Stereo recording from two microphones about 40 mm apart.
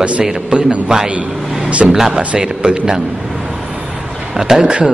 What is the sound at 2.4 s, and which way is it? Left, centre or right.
Speech, right.